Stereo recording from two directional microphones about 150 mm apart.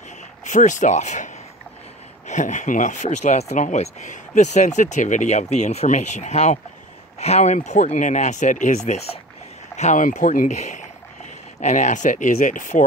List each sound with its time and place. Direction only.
0.4 s speech: 55° left (ahead or behind)